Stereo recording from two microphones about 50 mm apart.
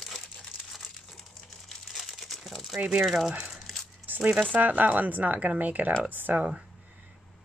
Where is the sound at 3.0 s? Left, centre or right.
Centre.